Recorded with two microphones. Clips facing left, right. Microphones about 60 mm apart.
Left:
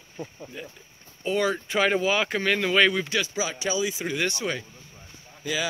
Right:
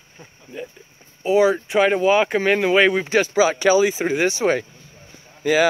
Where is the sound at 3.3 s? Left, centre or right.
Right.